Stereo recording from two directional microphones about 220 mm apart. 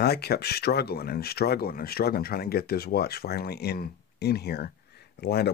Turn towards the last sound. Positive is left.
turn(degrees=45)  # may be behind; listen again after turning